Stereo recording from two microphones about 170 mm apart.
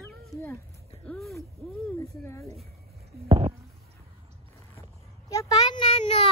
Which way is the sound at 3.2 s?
30° right (ahead or behind).